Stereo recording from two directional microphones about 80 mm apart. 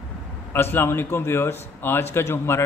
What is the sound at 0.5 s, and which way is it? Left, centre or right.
A man's voice, left.